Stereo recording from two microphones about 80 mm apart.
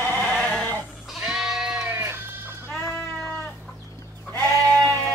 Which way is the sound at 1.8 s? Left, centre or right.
Right.